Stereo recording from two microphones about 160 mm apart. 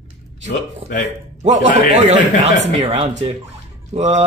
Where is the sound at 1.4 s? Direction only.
45° right (ahead or behind).